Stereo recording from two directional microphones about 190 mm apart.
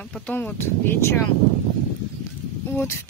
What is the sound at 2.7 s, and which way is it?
Speech, 10° left (ahead or behind).